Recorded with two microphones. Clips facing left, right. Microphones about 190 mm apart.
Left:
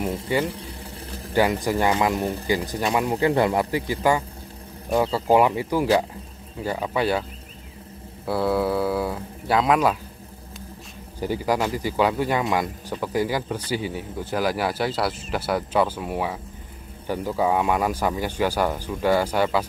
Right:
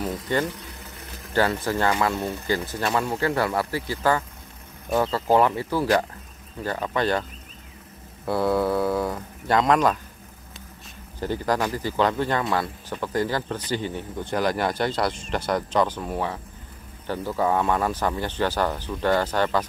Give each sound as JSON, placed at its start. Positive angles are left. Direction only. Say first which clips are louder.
{"t": 0.5, "sound": "water", "louder": "left 3 dB", "side_deg": 30}
{"t": 1.3, "sound": "speech", "louder": "left 2 dB", "side_deg": 15}
{"t": 8.3, "sound": "speech", "louder": "even", "side_deg": 5}
{"t": 11.1, "sound": "speech", "louder": "left 1 dB", "side_deg": 10}